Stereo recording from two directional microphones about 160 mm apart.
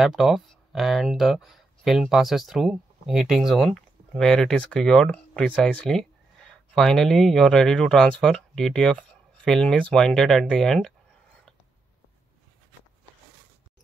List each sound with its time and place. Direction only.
0.0 s speech: centre (ahead or behind)